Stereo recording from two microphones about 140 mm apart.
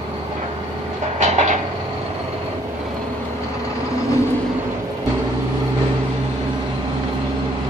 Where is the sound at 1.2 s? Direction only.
60° right (ahead or behind).